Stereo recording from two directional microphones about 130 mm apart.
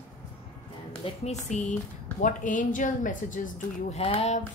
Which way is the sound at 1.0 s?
60° left (ahead or behind).